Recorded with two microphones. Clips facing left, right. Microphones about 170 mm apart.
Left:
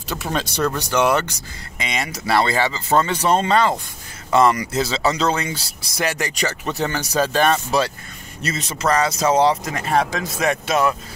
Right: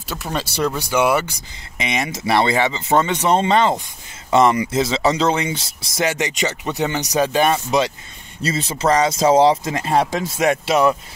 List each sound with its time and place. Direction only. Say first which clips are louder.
0.1 s speech: left 1 dB; centre (ahead or behind)
1.8 s speech: right 3 dB; 20° right (ahead or behind)
8.4 s speech: right 4 dB; 30° right (ahead or behind)